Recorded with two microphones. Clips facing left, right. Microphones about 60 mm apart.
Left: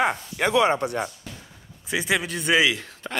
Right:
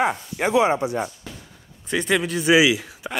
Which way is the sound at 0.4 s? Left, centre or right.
Left.